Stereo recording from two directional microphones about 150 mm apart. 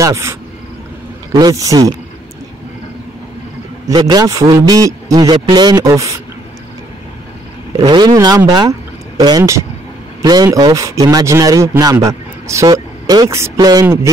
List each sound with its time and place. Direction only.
0.0 s a man's voice: 20° right (ahead or behind)
3.8 s a man's voice: 25° right (ahead or behind)
7.7 s a man's voice: 25° right (ahead or behind)